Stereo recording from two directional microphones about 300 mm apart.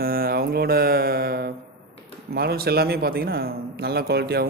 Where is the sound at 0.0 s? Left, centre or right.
Right.